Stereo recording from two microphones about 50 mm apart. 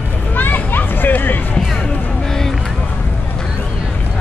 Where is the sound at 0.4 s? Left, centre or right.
Left.